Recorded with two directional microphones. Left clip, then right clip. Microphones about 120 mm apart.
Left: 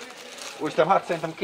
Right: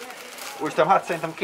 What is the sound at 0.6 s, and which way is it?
Speech, centre (ahead or behind).